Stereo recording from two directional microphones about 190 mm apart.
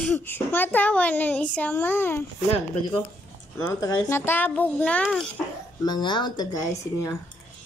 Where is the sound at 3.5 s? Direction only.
15° left (ahead or behind).